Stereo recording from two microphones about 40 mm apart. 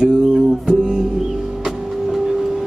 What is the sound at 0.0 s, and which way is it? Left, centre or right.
Music, centre.